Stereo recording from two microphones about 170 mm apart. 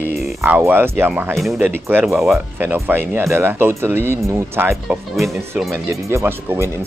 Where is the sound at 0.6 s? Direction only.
15° right (ahead or behind).